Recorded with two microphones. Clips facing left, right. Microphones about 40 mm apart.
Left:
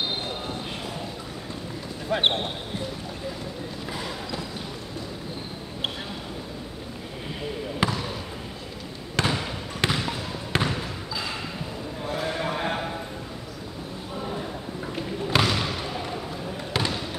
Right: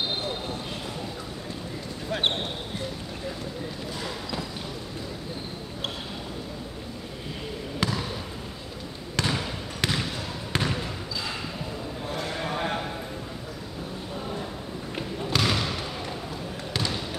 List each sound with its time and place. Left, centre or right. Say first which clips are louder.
2.0 s speech: left 4 dB; centre
3.9 s basketball bounce: left 3 dB; centre
7.8 s basketball bounce: left 3 dB; centre
9.1 s trickle: left 2 dB; centre
12.2 s sheep: left 2 dB; centre
15.4 s basketball bounce: left 1 dB; centre
16.7 s basketball bounce: left 3 dB; centre